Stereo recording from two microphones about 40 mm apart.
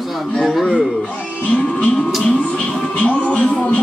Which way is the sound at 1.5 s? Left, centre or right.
Left.